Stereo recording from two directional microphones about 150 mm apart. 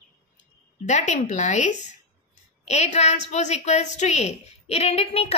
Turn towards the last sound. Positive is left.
turn(degrees=40)  # may be behind; listen again after turning